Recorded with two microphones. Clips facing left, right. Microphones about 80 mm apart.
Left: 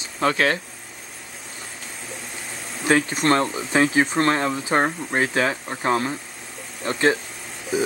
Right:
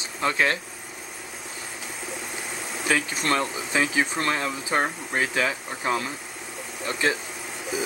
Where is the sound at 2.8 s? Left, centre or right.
Left.